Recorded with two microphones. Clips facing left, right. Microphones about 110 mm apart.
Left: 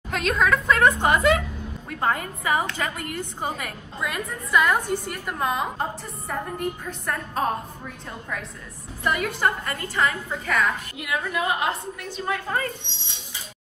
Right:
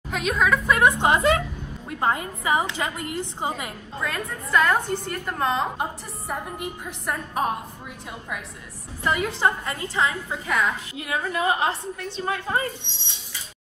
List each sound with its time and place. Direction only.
0.1 s a woman's voice: 5° right (ahead or behind); by 3.7 s 20° right (ahead or behind)
4.0 s a woman's voice: 10° left (ahead or behind)
5.8 s a woman's voice: 15° right (ahead or behind)
9.0 s a woman's voice: 20° right (ahead or behind)
11.0 s a woman's voice: 30° right (ahead or behind)